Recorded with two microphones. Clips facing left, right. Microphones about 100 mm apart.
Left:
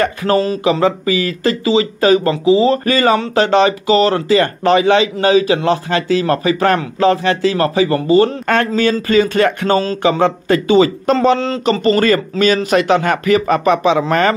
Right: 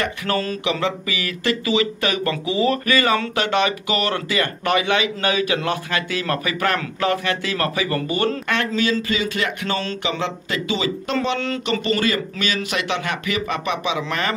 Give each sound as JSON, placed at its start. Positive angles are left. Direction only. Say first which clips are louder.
{"t": 0.0, "sound": "a sound", "louder": "left 8 dB", "side_deg": 35}
{"t": 0.7, "sound": "speech", "louder": "left 9 dB", "side_deg": 35}
{"t": 8.5, "sound": "speech", "louder": "left 7 dB", "side_deg": 45}